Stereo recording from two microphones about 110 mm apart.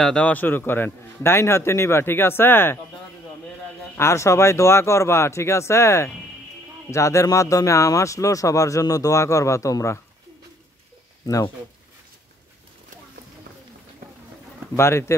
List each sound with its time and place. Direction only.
0.0 s a man's voice: 10° left (ahead or behind)
3.9 s a man's voice: 25° left (ahead or behind)
14.8 s a man's voice: 25° left (ahead or behind)